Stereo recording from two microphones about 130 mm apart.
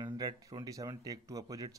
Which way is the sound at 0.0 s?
35° right (ahead or behind).